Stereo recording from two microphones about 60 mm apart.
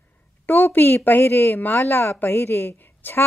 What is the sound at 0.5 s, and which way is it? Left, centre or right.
A woman's voice, left.